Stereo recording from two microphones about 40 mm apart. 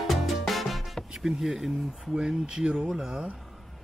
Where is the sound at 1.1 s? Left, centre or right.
Centre.